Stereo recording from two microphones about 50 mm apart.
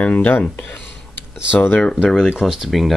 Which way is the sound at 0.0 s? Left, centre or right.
Left.